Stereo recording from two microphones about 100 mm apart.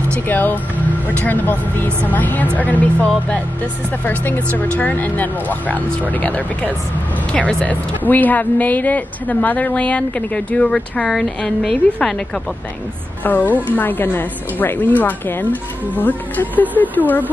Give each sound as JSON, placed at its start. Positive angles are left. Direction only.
{"t": 0.1, "sound": "speech", "side_deg": 20}
{"t": 13.2, "sound": "speech", "side_deg": 15}